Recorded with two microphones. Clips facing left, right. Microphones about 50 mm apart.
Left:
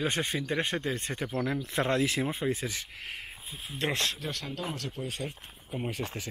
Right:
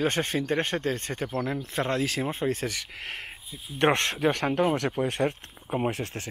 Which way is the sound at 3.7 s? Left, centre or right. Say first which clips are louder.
Right 8 dB; right.